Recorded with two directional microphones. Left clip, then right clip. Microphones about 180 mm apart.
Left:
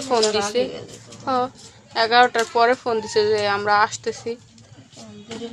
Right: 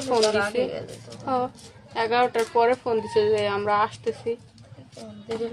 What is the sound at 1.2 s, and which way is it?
A woman's voice, 15° left (ahead or behind).